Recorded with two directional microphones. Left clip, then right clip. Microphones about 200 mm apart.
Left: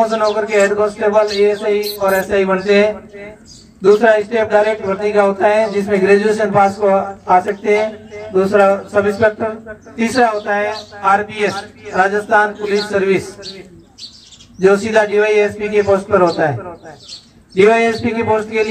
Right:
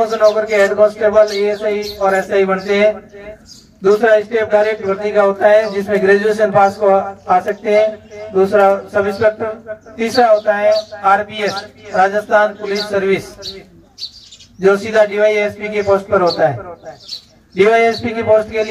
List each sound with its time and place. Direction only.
0.0 s a man's voice: 35° right (ahead or behind)
14.6 s a man's voice: 40° right (ahead or behind)
17.6 s a man's voice: 40° right (ahead or behind)